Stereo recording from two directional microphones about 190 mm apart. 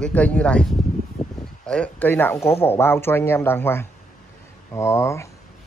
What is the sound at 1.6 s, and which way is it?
A man's voice, 5° left (ahead or behind).